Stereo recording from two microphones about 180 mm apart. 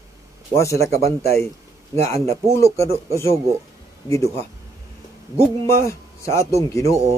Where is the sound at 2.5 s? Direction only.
15° left (ahead or behind).